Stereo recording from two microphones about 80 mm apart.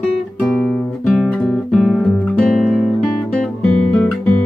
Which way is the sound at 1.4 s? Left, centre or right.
Centre.